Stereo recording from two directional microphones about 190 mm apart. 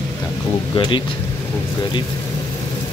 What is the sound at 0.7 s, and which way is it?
Speech, 25° left (ahead or behind).